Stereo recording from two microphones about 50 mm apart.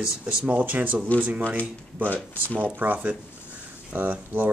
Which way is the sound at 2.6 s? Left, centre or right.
Right.